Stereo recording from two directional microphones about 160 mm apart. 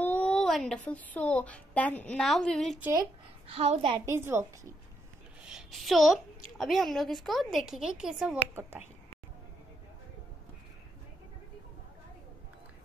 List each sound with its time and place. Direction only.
0.0 s a woman's voice: 10° left (ahead or behind)
2.8 s speech: 20° right (ahead or behind)
3.4 s a woman's voice: 40° right (ahead or behind)
4.0 s a woman's voice: 15° right (ahead or behind)
5.4 s speech: 5° right (ahead or behind)
8.5 s a woman's voice: 15° right (ahead or behind)